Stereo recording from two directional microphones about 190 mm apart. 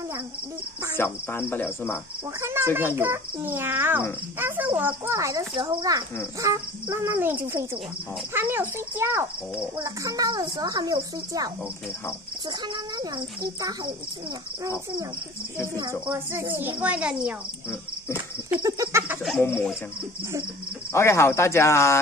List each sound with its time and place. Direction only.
0.9 s speech: 10° left (ahead or behind)
2.4 s a child's voice: 15° right (ahead or behind)
5.5 s a child's voice: 25° right (ahead or behind); by 17.7 s 5° right (ahead or behind)
18.1 s a sound: 15° right (ahead or behind)
19.2 s speech: 10° left (ahead or behind)
20.9 s speech: 15° left (ahead or behind)